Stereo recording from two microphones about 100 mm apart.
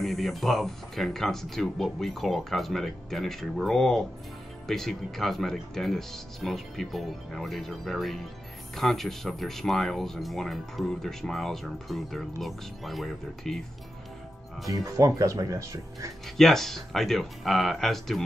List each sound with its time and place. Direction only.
0.0 s speech: centre (ahead or behind)
14.7 s speech: 35° right (ahead or behind)
16.3 s speech: 5° left (ahead or behind)